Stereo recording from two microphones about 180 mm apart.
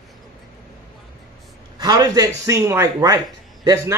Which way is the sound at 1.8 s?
20° right (ahead or behind).